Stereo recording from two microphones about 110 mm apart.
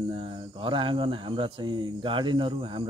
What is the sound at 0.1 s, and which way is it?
Speech, 55° right (ahead or behind).